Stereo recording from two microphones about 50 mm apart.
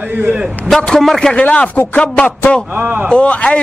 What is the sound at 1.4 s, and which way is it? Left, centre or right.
Speech, left.